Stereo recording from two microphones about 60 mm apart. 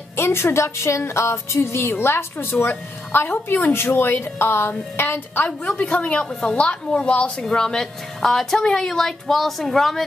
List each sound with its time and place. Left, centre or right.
0.1 s a woman's voice: left
5.4 s a woman's voice: left
7.4 s a woman's voice: centre